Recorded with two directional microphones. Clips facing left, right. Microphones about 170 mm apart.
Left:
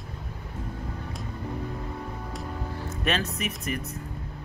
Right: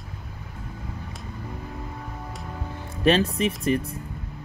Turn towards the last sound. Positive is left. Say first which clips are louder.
# right 8 dB
turn(degrees=-30)  # may be behind; listen again after turning